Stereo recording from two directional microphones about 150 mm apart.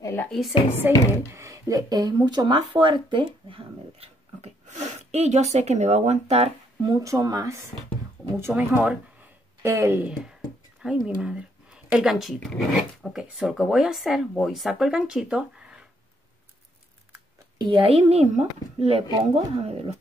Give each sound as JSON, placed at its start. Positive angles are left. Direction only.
{"t": 0.0, "sound": "a sound", "side_deg": 15}
{"t": 0.3, "sound": "speech", "side_deg": 0}
{"t": 0.8, "sound": "speech", "side_deg": -15}
{"t": 6.8, "sound": "speech", "side_deg": -25}
{"t": 17.6, "sound": "speech", "side_deg": -35}